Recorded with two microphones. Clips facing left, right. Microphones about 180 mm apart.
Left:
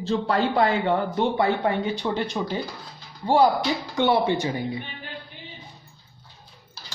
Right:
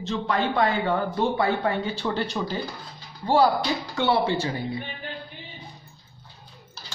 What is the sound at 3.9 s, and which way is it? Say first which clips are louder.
Speech: left 2 dB; 20° left (ahead or behind).